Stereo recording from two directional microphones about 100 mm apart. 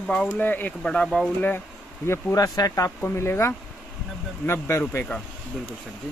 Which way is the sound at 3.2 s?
25° left (ahead or behind).